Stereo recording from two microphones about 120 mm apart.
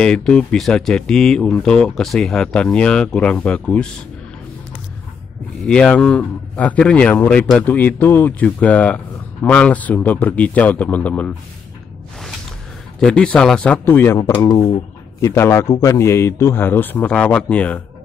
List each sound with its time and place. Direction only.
0.0 s speech: 5° left (ahead or behind)
5.6 s speech: 5° left (ahead or behind)
13.0 s speech: 10° left (ahead or behind)